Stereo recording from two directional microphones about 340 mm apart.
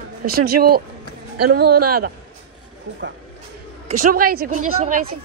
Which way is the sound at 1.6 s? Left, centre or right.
Right.